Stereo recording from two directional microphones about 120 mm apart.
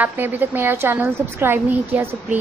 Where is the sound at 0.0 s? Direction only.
15° right (ahead or behind).